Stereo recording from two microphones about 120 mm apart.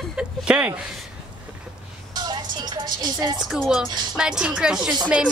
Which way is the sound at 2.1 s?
35° right (ahead or behind).